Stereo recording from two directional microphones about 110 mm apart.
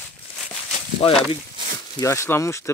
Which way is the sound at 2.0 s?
25° left (ahead or behind).